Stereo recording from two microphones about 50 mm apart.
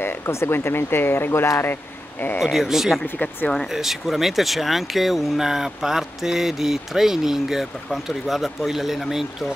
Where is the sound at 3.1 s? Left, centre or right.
Left.